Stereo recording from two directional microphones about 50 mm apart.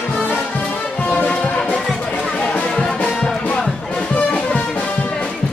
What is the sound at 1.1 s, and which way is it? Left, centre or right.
Music, left.